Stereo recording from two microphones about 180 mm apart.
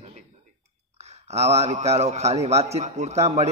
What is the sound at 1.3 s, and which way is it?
A man's voice, 35° right (ahead or behind).